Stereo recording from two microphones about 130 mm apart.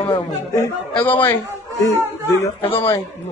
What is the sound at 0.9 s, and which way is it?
Speech, 15° left (ahead or behind).